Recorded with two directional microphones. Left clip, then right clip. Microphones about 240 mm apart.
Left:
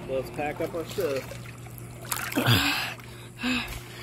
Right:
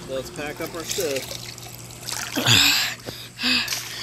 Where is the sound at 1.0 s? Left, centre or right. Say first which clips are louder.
Right 3 dB; right.